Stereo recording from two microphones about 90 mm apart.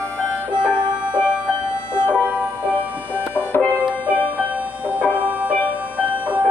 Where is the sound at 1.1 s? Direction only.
60° right (ahead or behind).